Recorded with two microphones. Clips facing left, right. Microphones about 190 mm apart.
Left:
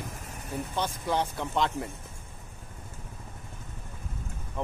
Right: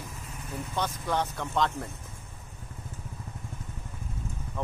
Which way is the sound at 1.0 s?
15° left (ahead or behind).